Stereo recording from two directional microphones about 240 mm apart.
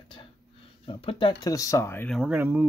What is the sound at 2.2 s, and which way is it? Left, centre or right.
Speech, centre.